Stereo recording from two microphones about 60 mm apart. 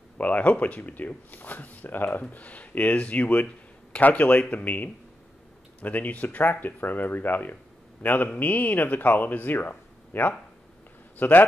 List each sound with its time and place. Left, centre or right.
0.2 s speech: left